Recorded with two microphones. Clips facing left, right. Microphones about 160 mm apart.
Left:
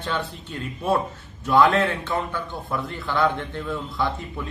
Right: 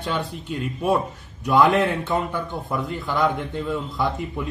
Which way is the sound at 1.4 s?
15° right (ahead or behind).